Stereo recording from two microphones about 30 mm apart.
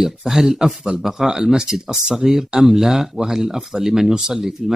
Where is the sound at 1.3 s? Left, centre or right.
Right.